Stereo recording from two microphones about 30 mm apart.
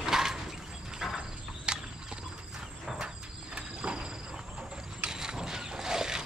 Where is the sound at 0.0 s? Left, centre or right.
Centre.